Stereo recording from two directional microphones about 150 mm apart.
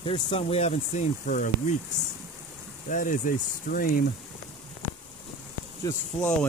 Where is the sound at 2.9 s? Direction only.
65° left (ahead or behind).